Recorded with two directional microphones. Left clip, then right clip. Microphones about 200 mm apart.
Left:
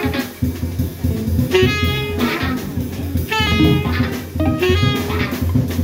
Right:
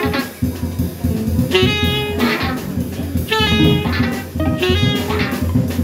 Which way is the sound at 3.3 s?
10° left (ahead or behind).